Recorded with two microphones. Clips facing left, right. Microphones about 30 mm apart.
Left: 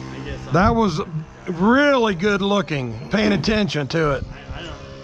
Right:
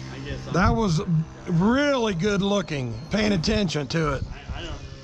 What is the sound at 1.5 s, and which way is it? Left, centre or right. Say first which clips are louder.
A man's voice: left 6 dB; centre.